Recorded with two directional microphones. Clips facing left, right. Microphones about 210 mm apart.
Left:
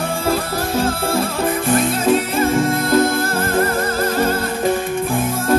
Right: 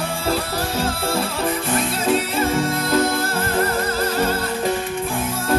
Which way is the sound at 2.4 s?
50° left (ahead or behind).